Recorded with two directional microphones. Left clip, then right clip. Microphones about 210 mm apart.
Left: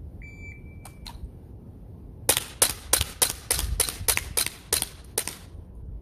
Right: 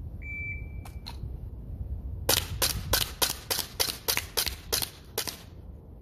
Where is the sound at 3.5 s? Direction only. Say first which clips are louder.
Even; 15° left (ahead or behind).